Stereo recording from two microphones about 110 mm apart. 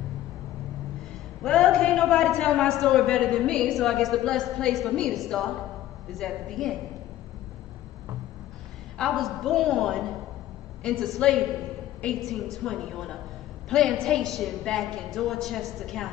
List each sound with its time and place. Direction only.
1.4 s a man's voice: 5° left (ahead or behind)
8.9 s a man's voice: 5° left (ahead or behind)